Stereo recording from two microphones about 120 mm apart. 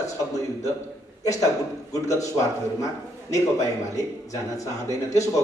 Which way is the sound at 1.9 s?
25° left (ahead or behind).